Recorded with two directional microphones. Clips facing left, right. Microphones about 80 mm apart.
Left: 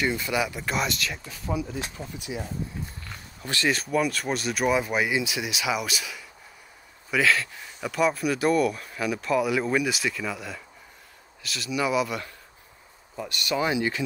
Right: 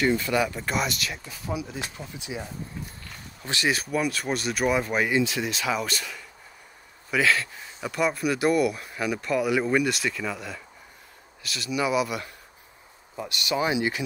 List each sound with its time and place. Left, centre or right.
0.0 s speech: centre; by 2.4 s right
3.4 s speech: centre
3.7 s speech: centre
13.1 s speech: centre